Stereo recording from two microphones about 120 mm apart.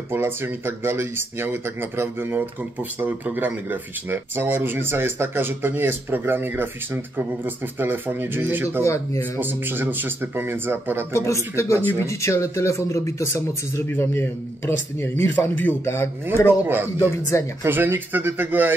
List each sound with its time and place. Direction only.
0.1 s speech: 20° right (ahead or behind)
8.8 s speech: 25° left (ahead or behind)
9.4 s speech: 15° right (ahead or behind)
11.1 s speech: 25° left (ahead or behind)
16.6 s speech: 15° right (ahead or behind)
17.3 s speech: 25° left (ahead or behind)
17.6 s speech: 15° right (ahead or behind)